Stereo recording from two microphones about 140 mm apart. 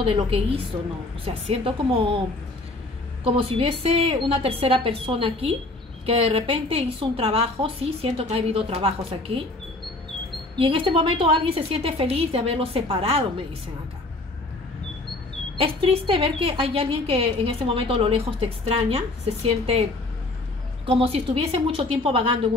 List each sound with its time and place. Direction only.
0.0 s a woman's voice: 40° right (ahead or behind)
3.3 s a woman's voice: 40° right (ahead or behind)
10.6 s a woman's voice: 40° right (ahead or behind)
15.5 s a woman's voice: 40° right (ahead or behind)